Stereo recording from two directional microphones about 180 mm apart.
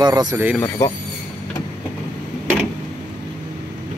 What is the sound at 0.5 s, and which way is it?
Speech, 15° left (ahead or behind).